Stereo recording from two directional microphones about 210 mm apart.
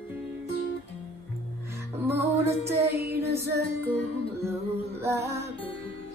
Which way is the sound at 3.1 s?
50° right (ahead or behind).